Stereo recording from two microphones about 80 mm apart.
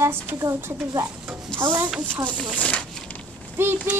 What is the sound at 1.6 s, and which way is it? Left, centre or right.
Speech, right.